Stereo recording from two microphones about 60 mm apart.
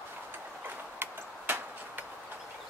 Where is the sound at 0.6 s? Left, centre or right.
Right.